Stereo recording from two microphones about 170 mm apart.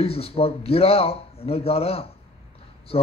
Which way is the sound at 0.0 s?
35° left (ahead or behind).